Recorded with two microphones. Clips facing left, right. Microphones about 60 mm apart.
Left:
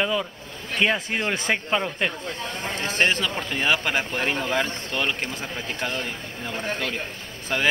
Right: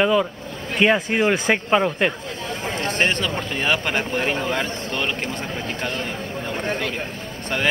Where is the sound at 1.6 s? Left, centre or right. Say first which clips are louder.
Right 6 dB; centre.